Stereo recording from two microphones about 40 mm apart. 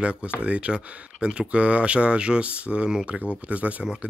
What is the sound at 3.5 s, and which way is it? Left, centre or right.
Speech, right.